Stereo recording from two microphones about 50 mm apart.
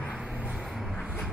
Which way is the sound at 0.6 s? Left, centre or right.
Centre.